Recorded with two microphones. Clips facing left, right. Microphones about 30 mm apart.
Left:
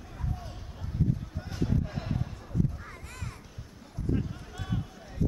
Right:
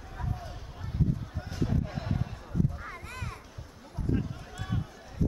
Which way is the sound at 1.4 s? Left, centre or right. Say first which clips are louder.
Even; centre.